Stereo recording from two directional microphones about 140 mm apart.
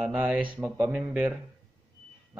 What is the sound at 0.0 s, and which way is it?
Speech, 10° right (ahead or behind).